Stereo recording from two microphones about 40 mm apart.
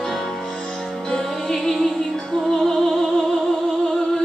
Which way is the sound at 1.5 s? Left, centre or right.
Centre.